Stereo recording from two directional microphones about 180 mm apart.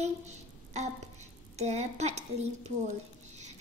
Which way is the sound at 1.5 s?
40° right (ahead or behind).